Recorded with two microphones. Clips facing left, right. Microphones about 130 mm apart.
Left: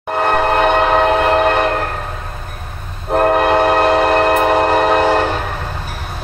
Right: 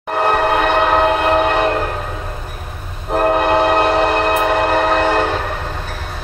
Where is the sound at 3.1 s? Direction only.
5° left (ahead or behind).